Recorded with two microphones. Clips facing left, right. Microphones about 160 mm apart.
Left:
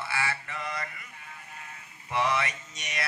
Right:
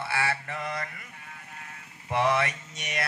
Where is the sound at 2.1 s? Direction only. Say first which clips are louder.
Right 3 dB; 55° right (ahead or behind).